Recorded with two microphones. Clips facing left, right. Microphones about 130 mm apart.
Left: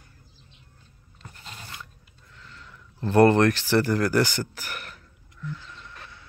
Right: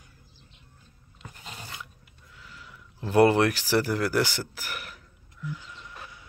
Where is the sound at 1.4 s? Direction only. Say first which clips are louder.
Right 1 dB; 10° right (ahead or behind).